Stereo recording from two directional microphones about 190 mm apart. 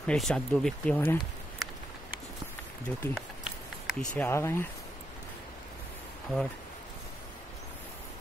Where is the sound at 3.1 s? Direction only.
Centre (ahead or behind).